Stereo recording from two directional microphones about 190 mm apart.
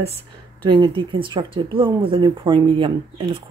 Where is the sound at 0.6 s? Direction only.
25° right (ahead or behind).